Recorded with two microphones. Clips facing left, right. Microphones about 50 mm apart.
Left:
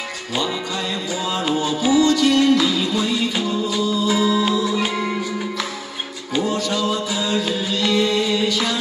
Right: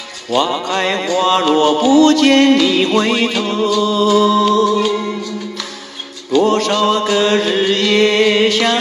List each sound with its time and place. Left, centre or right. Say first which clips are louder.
0.3 s music: right 9 dB; right
4.7 s music: right 5 dB; centre
6.4 s music: right 7 dB; right